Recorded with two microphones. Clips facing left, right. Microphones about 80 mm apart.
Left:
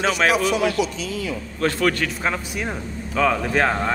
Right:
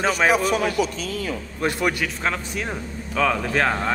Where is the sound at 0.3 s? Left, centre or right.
Right.